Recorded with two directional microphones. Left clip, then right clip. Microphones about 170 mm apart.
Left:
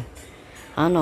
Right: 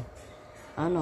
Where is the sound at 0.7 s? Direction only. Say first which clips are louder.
Left 8 dB; 25° left (ahead or behind).